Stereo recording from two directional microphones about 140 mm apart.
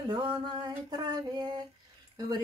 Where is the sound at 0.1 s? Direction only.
35° right (ahead or behind).